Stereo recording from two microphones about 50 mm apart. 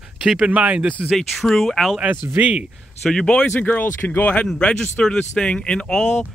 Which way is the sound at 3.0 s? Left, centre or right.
Centre.